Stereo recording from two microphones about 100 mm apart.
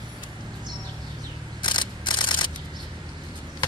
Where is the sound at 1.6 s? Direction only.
50° left (ahead or behind).